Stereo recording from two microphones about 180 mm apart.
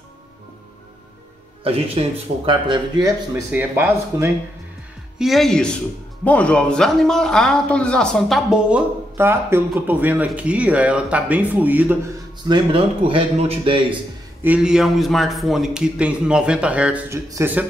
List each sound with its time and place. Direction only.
1.6 s speech: 30° right (ahead or behind); by 3.8 s 15° right (ahead or behind)
5.2 s a man's voice: centre (ahead or behind)
12.4 s speech: 30° right (ahead or behind)
14.4 s a man's voice: 5° right (ahead or behind)